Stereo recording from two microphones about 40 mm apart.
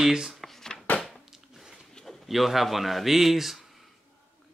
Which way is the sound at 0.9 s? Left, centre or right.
Left.